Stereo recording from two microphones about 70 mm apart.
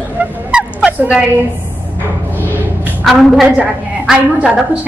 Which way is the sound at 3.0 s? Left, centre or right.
Centre.